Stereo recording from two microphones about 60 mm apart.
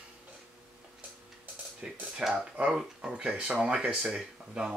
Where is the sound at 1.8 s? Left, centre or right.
Right.